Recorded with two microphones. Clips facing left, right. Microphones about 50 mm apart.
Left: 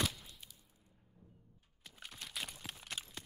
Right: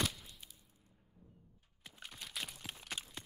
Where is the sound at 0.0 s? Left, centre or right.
Centre.